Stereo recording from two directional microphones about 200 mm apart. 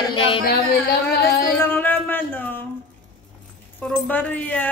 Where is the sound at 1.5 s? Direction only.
10° left (ahead or behind).